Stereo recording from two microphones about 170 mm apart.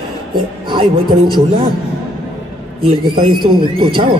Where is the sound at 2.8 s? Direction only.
30° right (ahead or behind).